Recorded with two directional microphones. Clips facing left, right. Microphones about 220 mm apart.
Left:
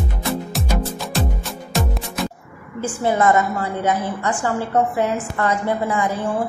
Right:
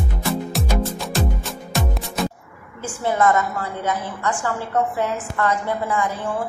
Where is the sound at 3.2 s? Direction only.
20° left (ahead or behind).